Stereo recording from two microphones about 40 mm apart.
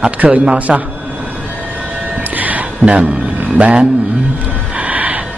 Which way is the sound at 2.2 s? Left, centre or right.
Right.